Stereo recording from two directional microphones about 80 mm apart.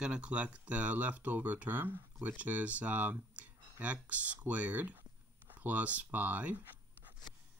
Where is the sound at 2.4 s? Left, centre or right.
Centre.